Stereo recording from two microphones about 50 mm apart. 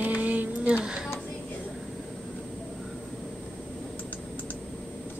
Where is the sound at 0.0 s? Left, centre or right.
Right.